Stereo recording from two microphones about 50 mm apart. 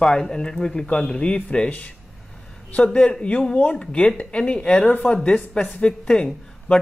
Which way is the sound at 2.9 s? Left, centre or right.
Left.